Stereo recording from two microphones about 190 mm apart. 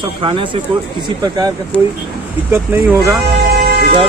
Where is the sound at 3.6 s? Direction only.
55° right (ahead or behind).